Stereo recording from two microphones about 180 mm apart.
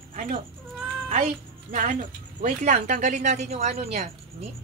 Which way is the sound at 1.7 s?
45° right (ahead or behind).